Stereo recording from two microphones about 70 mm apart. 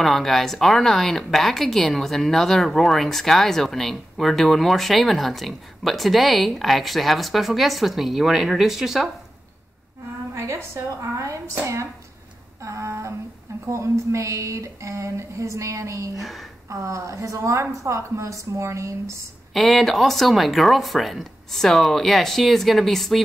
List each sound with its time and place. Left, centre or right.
0.0 s a woman's voice: centre
10.3 s a woman's voice: right
16.2 s a woman's voice: centre
16.6 s a woman's voice: right
19.5 s a woman's voice: centre